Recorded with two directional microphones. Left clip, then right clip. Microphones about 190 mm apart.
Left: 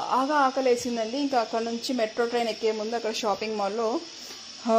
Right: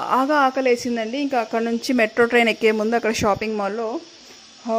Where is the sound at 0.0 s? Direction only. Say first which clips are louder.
Right 5 dB; 35° right (ahead or behind).